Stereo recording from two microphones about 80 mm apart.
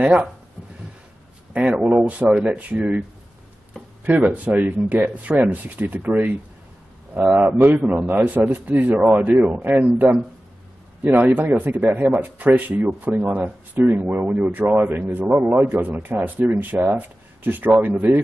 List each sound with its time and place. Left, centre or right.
0.0 s speech: centre
1.5 s speech: centre
11.1 s speech: right